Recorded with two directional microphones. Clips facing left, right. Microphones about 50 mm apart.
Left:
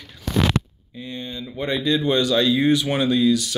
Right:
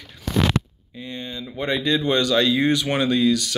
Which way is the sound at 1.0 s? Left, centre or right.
Right.